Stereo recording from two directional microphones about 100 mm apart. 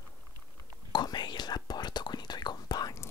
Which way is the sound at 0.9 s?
45° left (ahead or behind).